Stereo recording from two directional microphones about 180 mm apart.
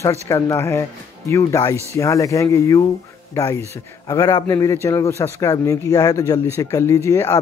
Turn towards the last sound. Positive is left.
turn(degrees=15)  # may be behind; listen again after turning